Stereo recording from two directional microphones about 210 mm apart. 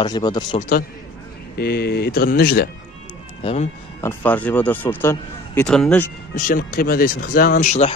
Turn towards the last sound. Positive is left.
turn(degrees=35)  # may be behind; listen again after turning